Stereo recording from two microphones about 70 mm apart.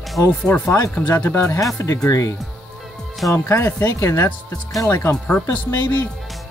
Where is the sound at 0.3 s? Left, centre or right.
Centre.